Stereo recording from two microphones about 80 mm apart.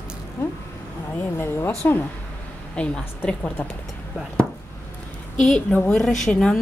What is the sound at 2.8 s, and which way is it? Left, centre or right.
Speech, centre.